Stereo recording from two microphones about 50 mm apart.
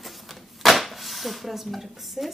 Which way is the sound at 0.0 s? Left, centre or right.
Centre.